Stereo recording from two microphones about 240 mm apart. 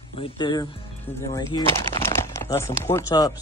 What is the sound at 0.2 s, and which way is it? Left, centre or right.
Speech, centre.